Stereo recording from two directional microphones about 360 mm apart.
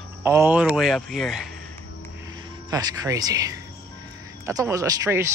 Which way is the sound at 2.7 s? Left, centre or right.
Centre.